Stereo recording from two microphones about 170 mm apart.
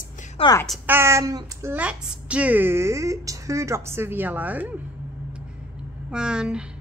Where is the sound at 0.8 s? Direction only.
15° right (ahead or behind).